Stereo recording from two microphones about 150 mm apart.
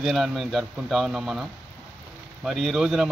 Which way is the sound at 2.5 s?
Centre (ahead or behind).